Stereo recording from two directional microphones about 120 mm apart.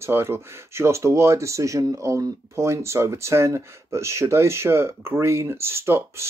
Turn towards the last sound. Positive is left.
turn(degrees=-20)  # may be behind; listen again after turning